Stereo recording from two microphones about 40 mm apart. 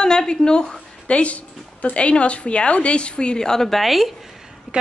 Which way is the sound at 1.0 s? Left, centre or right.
Left.